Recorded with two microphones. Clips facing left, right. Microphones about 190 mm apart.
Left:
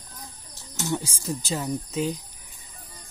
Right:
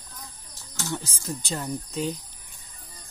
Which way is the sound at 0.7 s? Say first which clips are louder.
Left 4 dB; 15° left (ahead or behind).